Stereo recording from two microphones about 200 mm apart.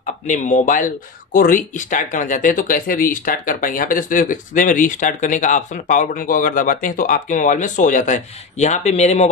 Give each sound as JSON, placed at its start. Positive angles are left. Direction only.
{"t": 0.0, "sound": "speech", "side_deg": 40}